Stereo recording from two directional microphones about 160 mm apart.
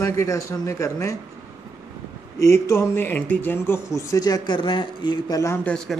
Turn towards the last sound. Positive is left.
turn(degrees=5)  # may be behind; listen again after turning